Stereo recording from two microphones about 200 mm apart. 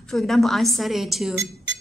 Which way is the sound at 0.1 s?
Centre (ahead or behind).